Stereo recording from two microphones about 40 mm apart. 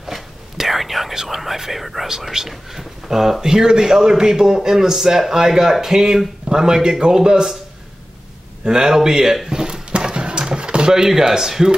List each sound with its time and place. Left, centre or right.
0.0 s a man's voice: centre
8.6 s a sound: centre
10.9 s a man's voice: centre